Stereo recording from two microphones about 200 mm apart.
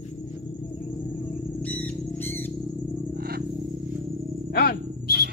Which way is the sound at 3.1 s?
50° right (ahead or behind).